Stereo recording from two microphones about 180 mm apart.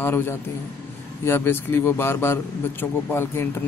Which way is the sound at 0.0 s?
10° left (ahead or behind).